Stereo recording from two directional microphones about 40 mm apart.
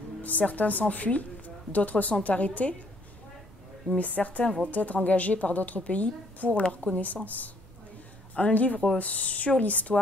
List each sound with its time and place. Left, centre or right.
0.2 s a woman's voice: left
4.0 s a woman's voice: left
8.5 s a woman's voice: left